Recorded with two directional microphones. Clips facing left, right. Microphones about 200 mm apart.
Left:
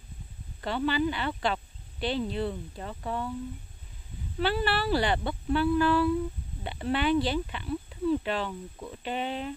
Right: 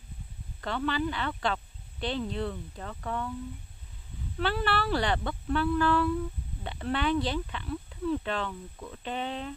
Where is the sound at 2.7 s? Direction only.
20° left (ahead or behind).